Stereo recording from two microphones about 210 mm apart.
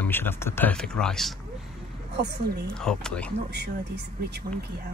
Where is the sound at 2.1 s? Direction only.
50° right (ahead or behind).